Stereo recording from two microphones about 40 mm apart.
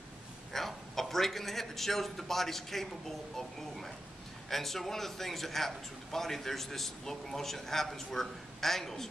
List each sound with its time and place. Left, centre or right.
0.5 s a man's voice: centre